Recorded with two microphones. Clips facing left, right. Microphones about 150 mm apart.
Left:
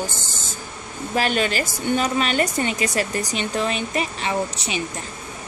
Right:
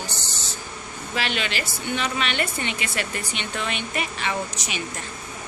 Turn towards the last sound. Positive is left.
turn(degrees=30)  # may be behind; listen again after turning